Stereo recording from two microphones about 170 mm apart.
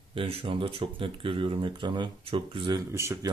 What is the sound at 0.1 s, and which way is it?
Speech, 35° right (ahead or behind).